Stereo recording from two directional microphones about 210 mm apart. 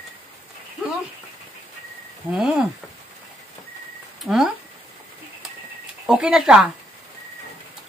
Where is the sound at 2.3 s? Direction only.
5° right (ahead or behind).